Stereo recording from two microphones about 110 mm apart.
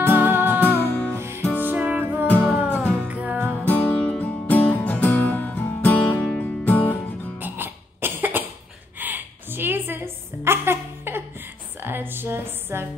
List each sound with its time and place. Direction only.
0.1 s music: 15° right (ahead or behind)
0.7 s music: 20° left (ahead or behind)
1.1 s music: 25° right (ahead or behind)
3.5 s music: 15° left (ahead or behind)
7.3 s cough: 20° right (ahead or behind)
8.9 s a sound: 15° right (ahead or behind)
11.8 s music: 20° right (ahead or behind)